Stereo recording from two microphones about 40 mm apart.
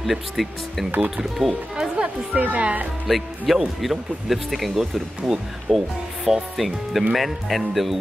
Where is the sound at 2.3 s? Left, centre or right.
Right.